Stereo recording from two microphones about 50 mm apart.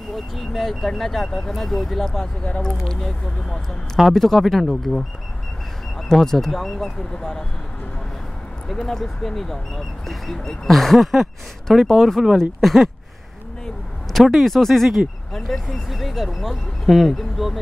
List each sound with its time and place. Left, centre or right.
0.1 s speech: centre
6.2 s speech: centre
8.6 s speech: centre
14.2 s speech: centre